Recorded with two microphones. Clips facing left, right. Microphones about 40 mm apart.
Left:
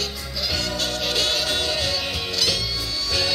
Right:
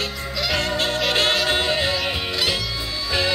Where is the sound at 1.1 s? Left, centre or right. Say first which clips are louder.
Right 4 dB; right.